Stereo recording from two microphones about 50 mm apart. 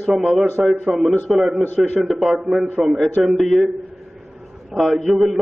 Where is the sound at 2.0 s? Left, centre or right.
Centre.